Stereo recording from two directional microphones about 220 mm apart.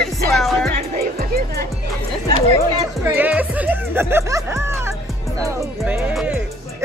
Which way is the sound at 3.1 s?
10° right (ahead or behind).